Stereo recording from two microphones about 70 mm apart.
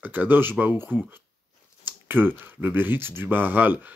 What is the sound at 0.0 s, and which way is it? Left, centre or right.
Speech, right.